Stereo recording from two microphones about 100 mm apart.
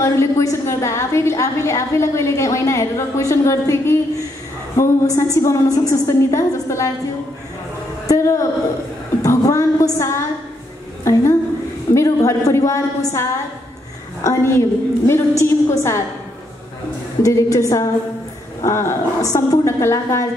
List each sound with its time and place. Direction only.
0.0 s a woman's voice: 25° left (ahead or behind)
8.1 s a woman's voice: 30° left (ahead or behind)
11.9 s a woman's voice: 30° left (ahead or behind)
17.2 s a woman's voice: 30° left (ahead or behind)